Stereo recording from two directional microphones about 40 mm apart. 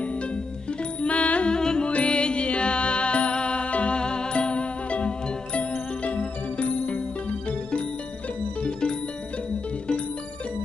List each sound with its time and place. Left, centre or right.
1.0 s music: left
1.5 s music: centre
1.9 s music: left